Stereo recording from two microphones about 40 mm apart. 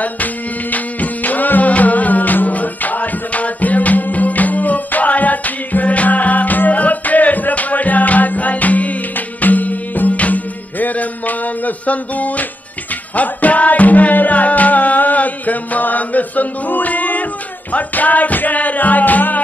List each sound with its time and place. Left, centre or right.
0.0 s music: left